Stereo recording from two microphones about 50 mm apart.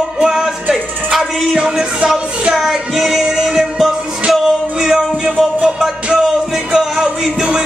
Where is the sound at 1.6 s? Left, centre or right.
Centre.